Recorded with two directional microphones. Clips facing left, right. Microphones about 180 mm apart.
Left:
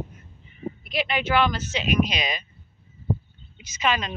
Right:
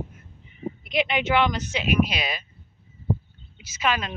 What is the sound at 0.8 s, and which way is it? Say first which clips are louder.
Speech: right 2 dB; 20° right (ahead or behind).